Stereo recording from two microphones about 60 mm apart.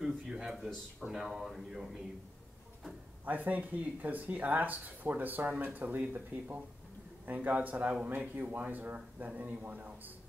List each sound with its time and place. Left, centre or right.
0.3 s a sound: centre
1.0 s speech: centre
3.3 s speech: right